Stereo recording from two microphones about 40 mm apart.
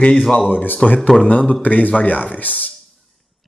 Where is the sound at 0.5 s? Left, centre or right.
Left.